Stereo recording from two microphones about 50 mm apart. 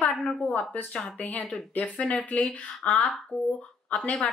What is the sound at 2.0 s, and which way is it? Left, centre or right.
A woman's voice, centre.